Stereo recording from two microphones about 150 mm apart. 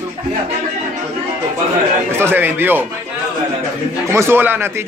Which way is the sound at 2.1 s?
15° right (ahead or behind).